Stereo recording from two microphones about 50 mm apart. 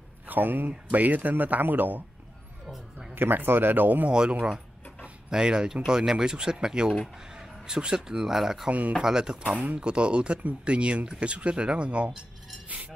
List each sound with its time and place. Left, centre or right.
0.3 s speech: right
2.6 s a sound: centre
3.2 s speech: right
4.1 s speech: centre
8.6 s speech: right
9.0 s speech: centre